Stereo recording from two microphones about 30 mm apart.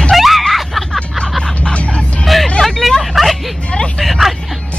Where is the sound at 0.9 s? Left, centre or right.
Left.